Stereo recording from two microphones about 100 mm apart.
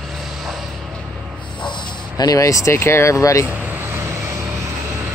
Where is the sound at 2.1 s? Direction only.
40° left (ahead or behind).